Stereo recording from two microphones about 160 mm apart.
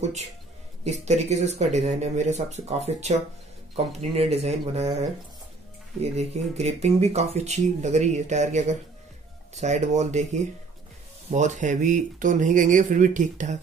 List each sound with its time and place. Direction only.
0.8 s speech: 45° right (ahead or behind)